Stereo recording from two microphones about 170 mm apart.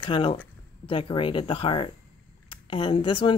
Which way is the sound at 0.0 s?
30° left (ahead or behind).